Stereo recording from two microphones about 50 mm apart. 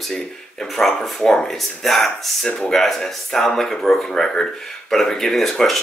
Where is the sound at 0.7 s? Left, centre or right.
Centre.